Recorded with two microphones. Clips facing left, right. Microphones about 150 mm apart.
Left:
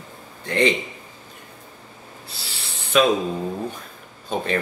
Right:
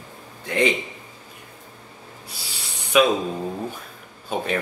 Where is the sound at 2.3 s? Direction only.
15° right (ahead or behind).